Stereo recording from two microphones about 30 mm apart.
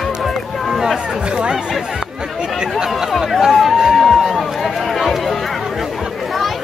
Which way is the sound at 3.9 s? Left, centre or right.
Centre.